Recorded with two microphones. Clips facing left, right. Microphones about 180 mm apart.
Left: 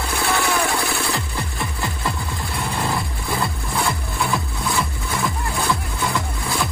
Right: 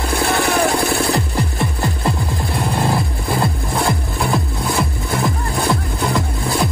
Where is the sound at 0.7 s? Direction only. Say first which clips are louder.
Right 6 dB; 45° right (ahead or behind).